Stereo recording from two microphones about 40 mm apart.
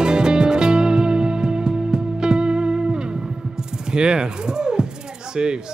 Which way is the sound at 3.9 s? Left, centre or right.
Right.